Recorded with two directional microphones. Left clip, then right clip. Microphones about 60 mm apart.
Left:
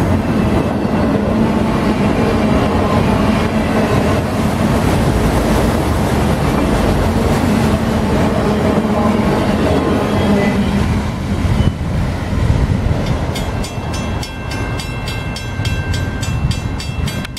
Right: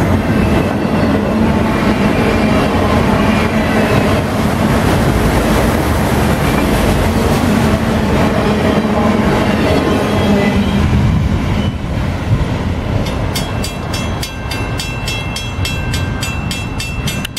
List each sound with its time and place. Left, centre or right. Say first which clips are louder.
0.1 s train: right 2 dB; right; by 7.7 s centre
8.1 s train: right 2 dB; right
10.3 s music: right 1 dB; centre